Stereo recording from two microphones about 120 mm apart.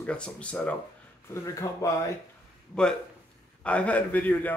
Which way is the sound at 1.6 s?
30° left (ahead or behind).